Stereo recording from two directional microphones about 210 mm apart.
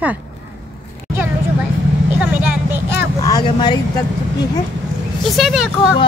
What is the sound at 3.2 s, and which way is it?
Speech, 20° left (ahead or behind).